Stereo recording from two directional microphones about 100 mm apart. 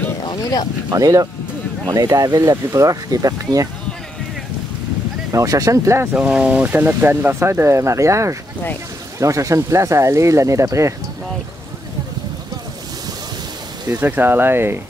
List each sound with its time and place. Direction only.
0.2 s speech: 45° left (ahead or behind)
0.8 s speech: 35° right (ahead or behind)
5.3 s speech: 35° right (ahead or behind)
6.1 s speech: 10° right (ahead or behind); by 11.0 s 30° right (ahead or behind)
14.0 s speech: 20° right (ahead or behind)